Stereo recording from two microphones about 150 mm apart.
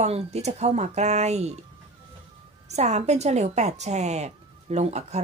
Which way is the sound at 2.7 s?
50° right (ahead or behind).